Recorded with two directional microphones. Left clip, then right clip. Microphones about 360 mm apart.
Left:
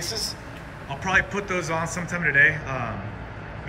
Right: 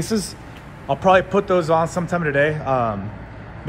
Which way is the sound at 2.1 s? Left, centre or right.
Right.